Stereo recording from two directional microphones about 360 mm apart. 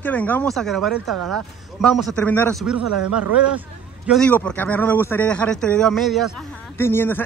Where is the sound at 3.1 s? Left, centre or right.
Centre.